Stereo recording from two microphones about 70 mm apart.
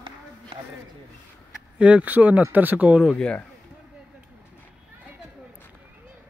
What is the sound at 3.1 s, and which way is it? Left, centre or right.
Speech, centre.